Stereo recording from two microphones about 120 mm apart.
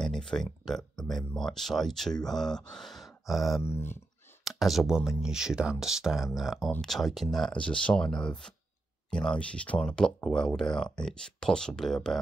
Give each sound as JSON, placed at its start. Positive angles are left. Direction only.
{"t": 0.0, "sound": "speech", "side_deg": 5}
{"t": 3.6, "sound": "speech", "side_deg": 20}
{"t": 4.5, "sound": "speech", "side_deg": 0}